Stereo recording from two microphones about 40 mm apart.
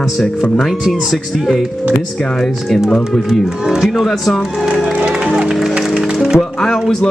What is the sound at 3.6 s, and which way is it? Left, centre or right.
Speech, centre.